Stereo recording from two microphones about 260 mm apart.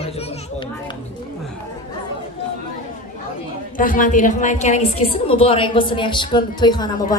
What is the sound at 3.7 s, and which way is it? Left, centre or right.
A woman's voice, left.